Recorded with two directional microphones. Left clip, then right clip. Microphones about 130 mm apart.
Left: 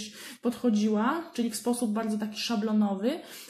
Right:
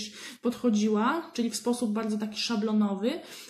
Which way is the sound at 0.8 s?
30° right (ahead or behind).